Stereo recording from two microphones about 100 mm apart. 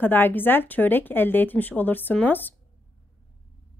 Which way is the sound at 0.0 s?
20° left (ahead or behind).